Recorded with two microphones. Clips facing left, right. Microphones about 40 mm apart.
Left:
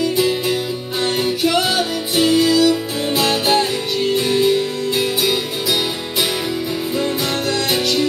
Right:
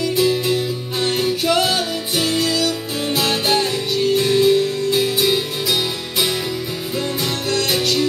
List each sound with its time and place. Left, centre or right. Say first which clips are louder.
0.0 s music: even; centre
7.5 s music: right 2 dB; centre